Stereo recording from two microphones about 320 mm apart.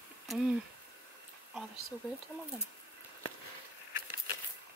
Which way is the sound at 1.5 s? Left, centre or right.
Centre.